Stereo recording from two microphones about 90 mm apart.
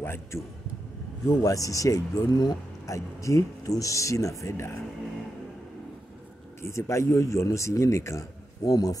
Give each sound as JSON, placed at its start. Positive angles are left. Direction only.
{"t": 0.0, "sound": "a man's voice", "side_deg": 25}
{"t": 1.4, "sound": "speech", "side_deg": 40}
{"t": 6.6, "sound": "speech", "side_deg": 30}